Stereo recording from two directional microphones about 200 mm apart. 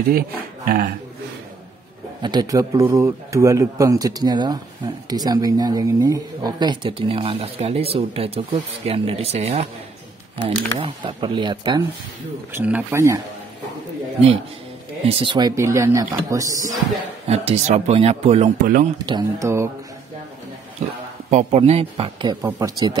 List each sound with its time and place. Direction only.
0.7 s a man's voice: 50° right (ahead or behind)
2.2 s a man's voice: 20° right (ahead or behind)
12.5 s speech: 10° right (ahead or behind)
15.0 s speech: 25° right (ahead or behind)
17.3 s speech: 30° right (ahead or behind)
19.0 s speech: 20° right (ahead or behind)
20.8 s a man's voice: 35° right (ahead or behind)